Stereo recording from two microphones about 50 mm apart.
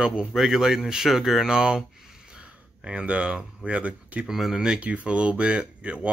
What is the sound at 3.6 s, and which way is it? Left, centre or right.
Speech, right.